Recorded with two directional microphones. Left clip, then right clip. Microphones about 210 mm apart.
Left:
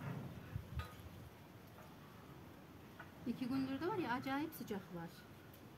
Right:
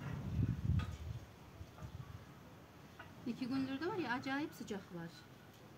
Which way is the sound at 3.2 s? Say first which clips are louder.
Right 1 dB; 10° left (ahead or behind).